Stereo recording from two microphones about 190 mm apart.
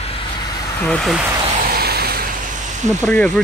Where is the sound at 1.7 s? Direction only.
55° right (ahead or behind).